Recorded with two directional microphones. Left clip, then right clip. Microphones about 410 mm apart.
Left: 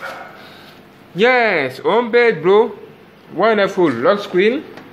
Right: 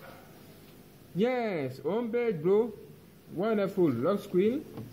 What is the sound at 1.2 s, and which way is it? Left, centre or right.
Speech, centre.